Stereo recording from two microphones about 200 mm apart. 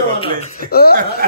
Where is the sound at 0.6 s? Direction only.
50° left (ahead or behind).